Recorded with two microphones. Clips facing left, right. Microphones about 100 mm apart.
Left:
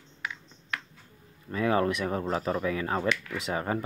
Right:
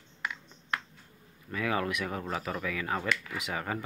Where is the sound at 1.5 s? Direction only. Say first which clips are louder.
Left 5 dB; 35° left (ahead or behind).